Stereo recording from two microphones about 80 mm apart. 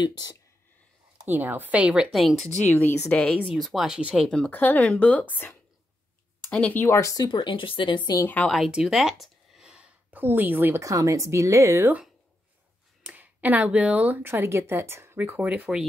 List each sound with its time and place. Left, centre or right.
0.0 s speech: left
1.2 s a woman's voice: right
2.1 s speech: centre
3.1 s speech: centre
3.4 s speech: centre
4.3 s speech: centre
6.5 s speech: centre
6.8 s speech: left
7.2 s speech: left
8.5 s speech: centre
10.1 s a woman's voice: right
10.8 s speech: right
13.0 s speech: centre